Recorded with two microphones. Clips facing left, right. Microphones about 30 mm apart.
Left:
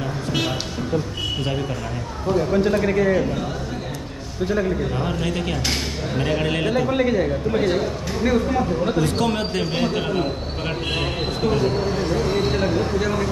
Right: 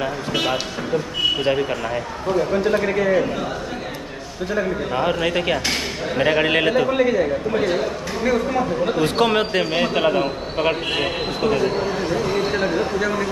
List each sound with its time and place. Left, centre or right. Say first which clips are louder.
1.4 s a man's voice: right 5 dB; right
4.9 s a man's voice: right 4 dB; right
8.9 s a man's voice: right 3 dB; right